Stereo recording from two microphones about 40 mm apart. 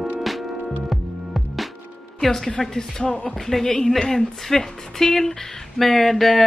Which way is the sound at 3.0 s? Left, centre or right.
Left.